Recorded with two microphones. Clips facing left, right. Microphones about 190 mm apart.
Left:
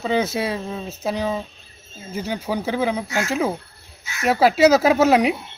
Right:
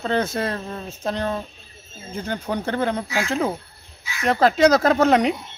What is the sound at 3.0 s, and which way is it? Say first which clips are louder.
Speech: left 1 dB; 45° left (ahead or behind).